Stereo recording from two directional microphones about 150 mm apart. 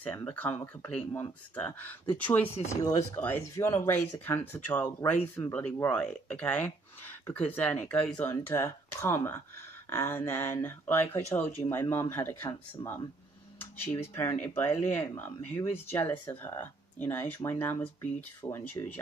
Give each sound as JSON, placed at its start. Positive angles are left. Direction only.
{"t": 0.0, "sound": "speech", "side_deg": 10}
{"t": 2.8, "sound": "speech", "side_deg": 25}
{"t": 3.2, "sound": "speech", "side_deg": 15}